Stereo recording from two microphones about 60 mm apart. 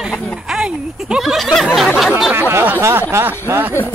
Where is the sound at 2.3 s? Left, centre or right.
Right.